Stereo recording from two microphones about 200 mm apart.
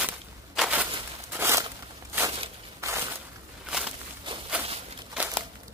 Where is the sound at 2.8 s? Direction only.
15° right (ahead or behind).